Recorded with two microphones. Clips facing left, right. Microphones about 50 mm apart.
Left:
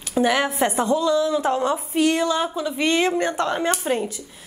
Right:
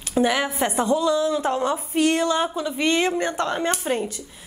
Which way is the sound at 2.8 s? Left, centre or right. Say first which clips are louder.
Left 1 dB; centre.